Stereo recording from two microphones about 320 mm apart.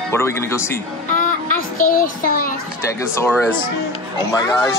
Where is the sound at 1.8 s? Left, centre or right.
Left.